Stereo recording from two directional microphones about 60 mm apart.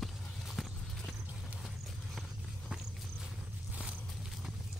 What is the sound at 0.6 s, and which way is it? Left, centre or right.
Clip-clop, centre.